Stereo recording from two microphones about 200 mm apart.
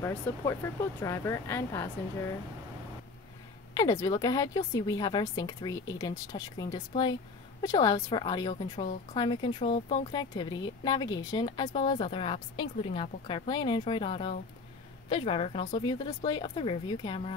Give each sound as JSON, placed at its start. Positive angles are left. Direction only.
{"t": 0.6, "sound": "speech", "side_deg": 10}
{"t": 3.7, "sound": "a woman's voice", "side_deg": 15}